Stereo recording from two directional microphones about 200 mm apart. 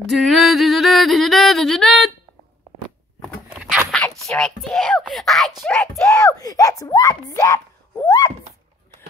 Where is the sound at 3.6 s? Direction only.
5° right (ahead or behind).